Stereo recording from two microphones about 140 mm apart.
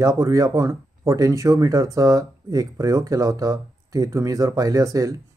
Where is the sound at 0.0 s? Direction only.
25° right (ahead or behind).